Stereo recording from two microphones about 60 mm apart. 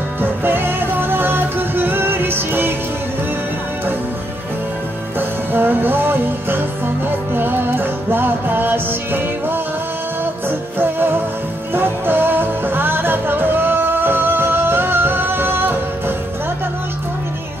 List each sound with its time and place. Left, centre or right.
0.2 s music: right
5.5 s music: right
10.8 s music: right